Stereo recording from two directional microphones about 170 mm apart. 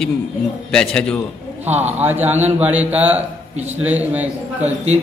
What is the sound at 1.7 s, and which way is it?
Speech, 40° right (ahead or behind).